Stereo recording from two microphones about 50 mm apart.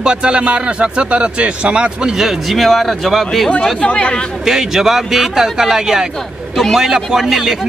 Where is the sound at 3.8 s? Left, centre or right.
Left.